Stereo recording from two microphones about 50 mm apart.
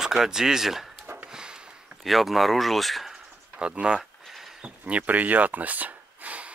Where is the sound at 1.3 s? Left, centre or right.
Centre.